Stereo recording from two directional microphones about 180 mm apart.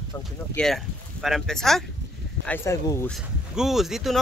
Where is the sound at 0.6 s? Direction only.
Centre (ahead or behind).